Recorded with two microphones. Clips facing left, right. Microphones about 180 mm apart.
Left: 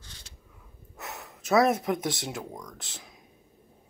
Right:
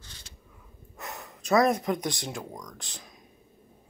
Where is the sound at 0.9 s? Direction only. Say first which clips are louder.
Right 1 dB; 5° left (ahead or behind).